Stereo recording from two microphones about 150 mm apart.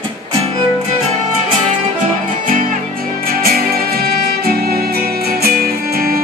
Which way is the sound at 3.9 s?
90° right.